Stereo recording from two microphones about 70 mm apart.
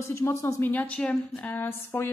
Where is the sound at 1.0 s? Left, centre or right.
Left.